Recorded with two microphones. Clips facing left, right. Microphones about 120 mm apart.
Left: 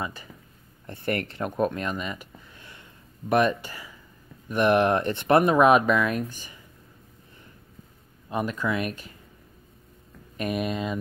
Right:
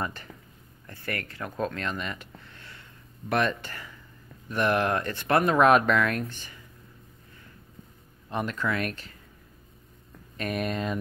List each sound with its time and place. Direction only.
0.0 s speech: 5° left (ahead or behind)
0.8 s speech: 25° left (ahead or behind)
5.6 s speech: 10° left (ahead or behind)
8.3 s speech: 10° left (ahead or behind)
10.3 s speech: 10° left (ahead or behind)